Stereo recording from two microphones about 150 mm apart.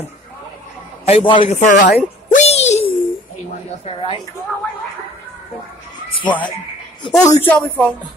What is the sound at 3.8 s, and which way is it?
Speech, 35° left (ahead or behind).